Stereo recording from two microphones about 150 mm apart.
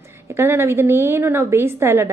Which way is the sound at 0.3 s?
15° right (ahead or behind).